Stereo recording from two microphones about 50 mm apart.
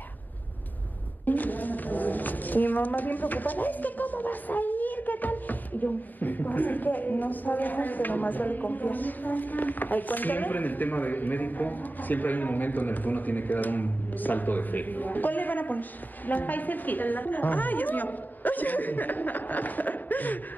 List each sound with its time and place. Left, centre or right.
1.2 s a woman's voice: left